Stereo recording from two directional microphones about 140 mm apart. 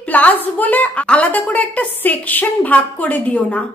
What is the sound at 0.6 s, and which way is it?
A woman's voice, 10° left (ahead or behind).